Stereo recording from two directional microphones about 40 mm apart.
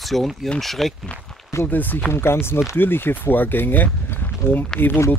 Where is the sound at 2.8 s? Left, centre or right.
Left.